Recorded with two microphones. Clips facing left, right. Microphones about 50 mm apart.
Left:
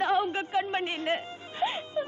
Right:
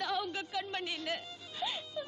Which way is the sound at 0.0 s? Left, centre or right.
Left.